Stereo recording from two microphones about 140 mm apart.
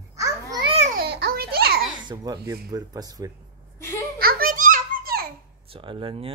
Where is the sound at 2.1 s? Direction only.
30° right (ahead or behind).